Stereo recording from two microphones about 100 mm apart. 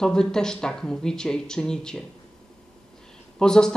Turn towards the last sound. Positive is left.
turn(degrees=5)  # may be behind; listen again after turning